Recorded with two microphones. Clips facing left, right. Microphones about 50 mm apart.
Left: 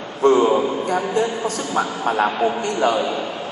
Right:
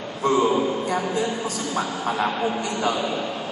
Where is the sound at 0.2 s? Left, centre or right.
Left.